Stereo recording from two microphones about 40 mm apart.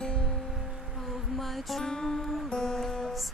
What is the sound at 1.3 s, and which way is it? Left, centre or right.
Music, centre.